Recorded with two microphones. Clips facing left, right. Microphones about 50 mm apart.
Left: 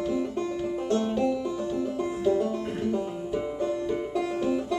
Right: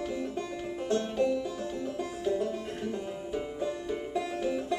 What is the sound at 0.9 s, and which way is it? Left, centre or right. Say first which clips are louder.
Banjo: left 2 dB; centre.